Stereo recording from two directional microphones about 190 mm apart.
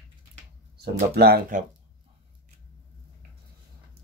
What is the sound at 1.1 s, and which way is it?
Speech, 55° right (ahead or behind).